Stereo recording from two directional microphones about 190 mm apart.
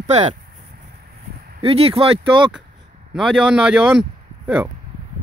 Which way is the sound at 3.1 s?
5° right (ahead or behind).